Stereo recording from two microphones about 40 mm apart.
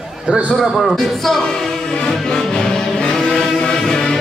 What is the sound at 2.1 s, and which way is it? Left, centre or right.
Music, centre.